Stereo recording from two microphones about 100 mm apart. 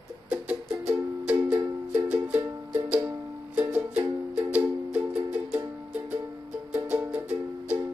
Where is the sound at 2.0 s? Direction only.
15° right (ahead or behind).